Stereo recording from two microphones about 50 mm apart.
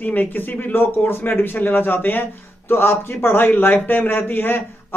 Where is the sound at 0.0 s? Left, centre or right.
Left.